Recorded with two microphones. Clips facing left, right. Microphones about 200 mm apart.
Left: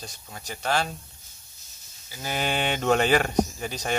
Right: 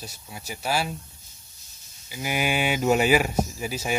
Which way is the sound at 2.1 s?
15° right (ahead or behind).